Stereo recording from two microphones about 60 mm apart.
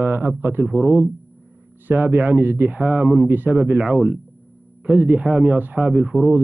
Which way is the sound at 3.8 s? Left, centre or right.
Centre.